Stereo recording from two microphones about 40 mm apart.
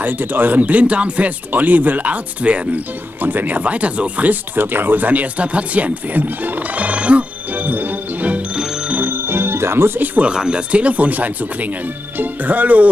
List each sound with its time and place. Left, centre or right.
0.0 s speech: right
1.5 s speech: right
3.2 s speech: right
4.6 s speech: right
7.6 s jingle bell: right
9.0 s music: right
9.9 s speech: right
10.2 s speech: right